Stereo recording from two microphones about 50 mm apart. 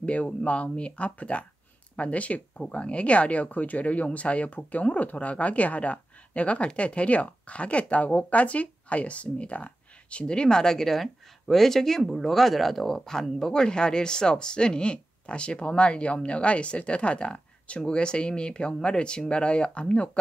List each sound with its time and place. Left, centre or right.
0.0 s speech: left